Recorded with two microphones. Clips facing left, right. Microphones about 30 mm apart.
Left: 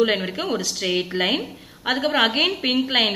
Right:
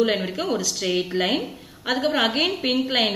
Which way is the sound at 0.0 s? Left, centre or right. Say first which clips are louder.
Left 1 dB; centre.